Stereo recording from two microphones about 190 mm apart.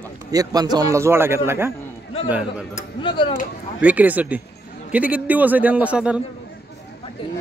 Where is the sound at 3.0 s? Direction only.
25° left (ahead or behind).